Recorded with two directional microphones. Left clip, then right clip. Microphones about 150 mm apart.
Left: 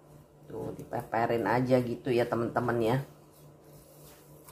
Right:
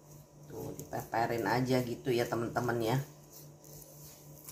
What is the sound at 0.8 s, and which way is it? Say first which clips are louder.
Speech: left 3 dB; 50° left (ahead or behind).